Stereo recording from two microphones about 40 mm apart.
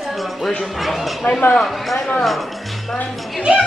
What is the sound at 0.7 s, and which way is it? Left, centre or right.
Speech, centre.